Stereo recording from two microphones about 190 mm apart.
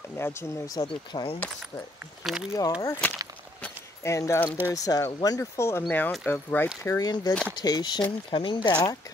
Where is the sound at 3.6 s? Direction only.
15° left (ahead or behind).